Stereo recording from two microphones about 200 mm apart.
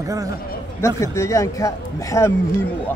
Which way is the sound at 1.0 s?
15° left (ahead or behind).